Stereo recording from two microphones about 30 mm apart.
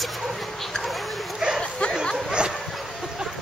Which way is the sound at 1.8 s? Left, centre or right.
Left.